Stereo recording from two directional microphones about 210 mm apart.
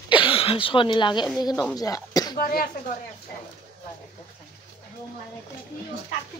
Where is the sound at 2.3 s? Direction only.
45° left (ahead or behind).